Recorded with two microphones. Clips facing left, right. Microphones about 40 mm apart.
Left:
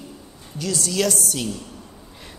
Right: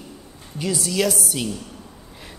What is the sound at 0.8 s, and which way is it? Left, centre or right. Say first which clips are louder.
Speech: even; centre.